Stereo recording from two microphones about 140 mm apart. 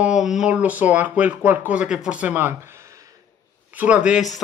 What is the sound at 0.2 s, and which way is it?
Speech, 5° right (ahead or behind).